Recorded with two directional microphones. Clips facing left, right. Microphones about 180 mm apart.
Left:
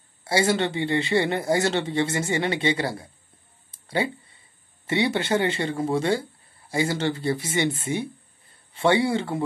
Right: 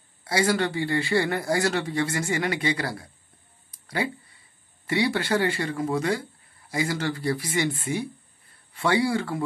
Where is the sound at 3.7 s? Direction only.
25° left (ahead or behind).